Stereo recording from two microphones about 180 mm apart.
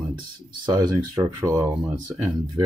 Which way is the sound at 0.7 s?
20° right (ahead or behind).